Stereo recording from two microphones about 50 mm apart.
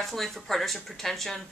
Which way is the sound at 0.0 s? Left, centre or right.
Centre.